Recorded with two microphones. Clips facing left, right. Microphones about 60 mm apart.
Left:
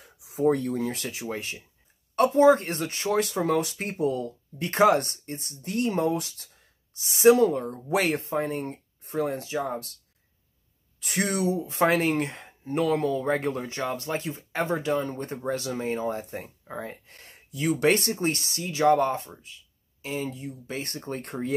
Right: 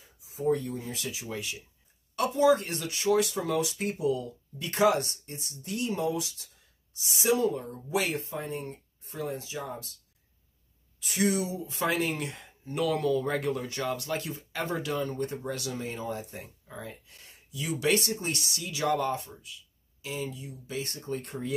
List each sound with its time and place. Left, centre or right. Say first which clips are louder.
0.0 s speech: left 6 dB; left
11.0 s speech: left 1 dB; left